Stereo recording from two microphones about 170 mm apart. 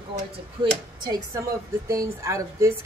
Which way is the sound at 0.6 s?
25° right (ahead or behind).